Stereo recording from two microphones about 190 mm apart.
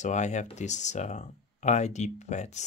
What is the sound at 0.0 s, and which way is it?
Speech, 40° left (ahead or behind).